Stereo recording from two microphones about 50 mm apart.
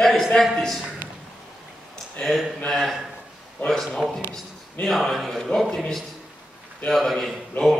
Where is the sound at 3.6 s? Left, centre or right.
Left.